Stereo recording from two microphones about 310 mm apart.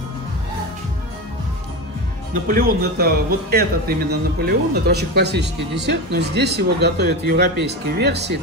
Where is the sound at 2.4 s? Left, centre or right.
Right.